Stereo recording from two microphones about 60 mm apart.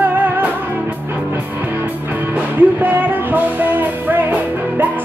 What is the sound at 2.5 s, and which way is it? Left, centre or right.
Music, right.